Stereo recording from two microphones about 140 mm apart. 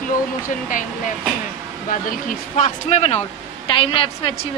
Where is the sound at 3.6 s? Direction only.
40° left (ahead or behind).